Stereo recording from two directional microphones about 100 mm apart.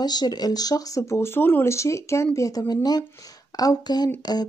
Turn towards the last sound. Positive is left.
turn(degrees=40)  # may be behind; listen again after turning